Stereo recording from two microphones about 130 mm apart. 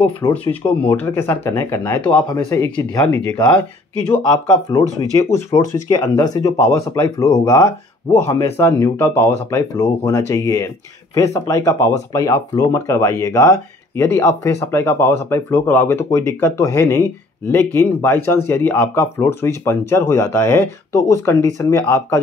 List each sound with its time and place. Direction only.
0.3 s speech: 10° left (ahead or behind)
2.2 s speech: 25° left (ahead or behind)